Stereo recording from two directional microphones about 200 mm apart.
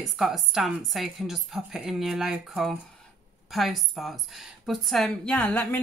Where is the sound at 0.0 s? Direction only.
Centre (ahead or behind).